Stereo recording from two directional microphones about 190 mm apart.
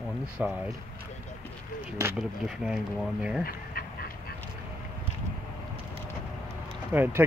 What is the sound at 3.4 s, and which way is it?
Dog, 50° left (ahead or behind).